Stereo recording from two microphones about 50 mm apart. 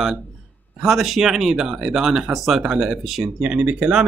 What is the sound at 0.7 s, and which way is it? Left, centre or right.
Speech, centre.